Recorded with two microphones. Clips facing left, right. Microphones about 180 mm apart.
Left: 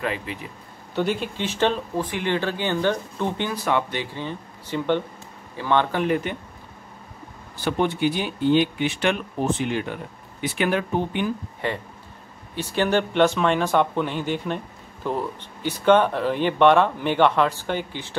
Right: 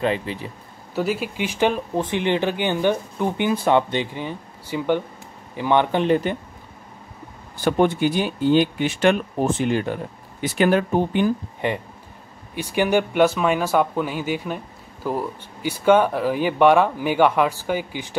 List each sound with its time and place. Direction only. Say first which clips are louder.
0.0 s speech: right 5 dB; 30° right (ahead or behind)
0.9 s speech: right 1 dB; 5° right (ahead or behind)
2.0 s speech: right 3 dB; 20° right (ahead or behind)
3.5 s speech: right 5 dB; 25° right (ahead or behind)
7.6 s speech: right 4 dB; 45° right (ahead or behind)
11.6 s speech: right 3 dB; 20° right (ahead or behind)